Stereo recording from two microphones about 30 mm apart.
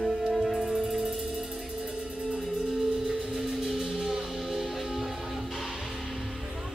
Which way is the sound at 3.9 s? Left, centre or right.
Centre.